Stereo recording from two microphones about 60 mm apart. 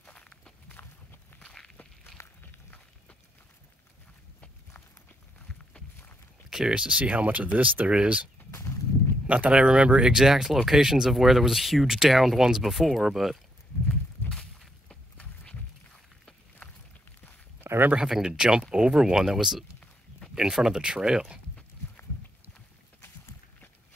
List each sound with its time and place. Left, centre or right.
0.0 s walk: centre
6.5 s speech: centre
8.5 s a sound: left
9.3 s speech: centre
10.1 s speech: centre
14.9 s walk: centre
17.6 s a sound: right
17.9 s speech: centre